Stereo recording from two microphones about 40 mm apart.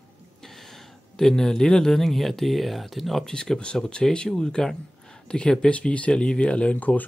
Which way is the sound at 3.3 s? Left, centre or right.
Centre.